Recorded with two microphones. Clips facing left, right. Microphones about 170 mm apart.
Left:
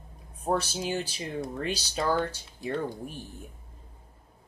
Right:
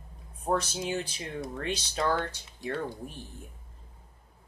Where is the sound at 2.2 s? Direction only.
15° left (ahead or behind).